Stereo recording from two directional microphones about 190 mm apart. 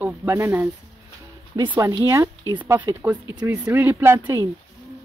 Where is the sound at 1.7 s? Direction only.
15° right (ahead or behind).